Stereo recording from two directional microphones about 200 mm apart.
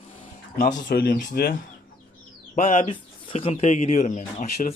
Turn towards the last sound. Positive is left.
turn(degrees=40)  # may be behind; listen again after turning